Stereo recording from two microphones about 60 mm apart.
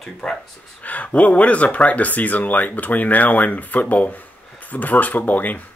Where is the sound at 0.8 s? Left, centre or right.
Left.